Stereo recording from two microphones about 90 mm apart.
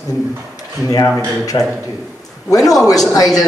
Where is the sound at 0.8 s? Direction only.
45° left (ahead or behind).